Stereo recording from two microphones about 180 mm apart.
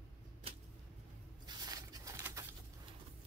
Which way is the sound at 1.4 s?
25° right (ahead or behind).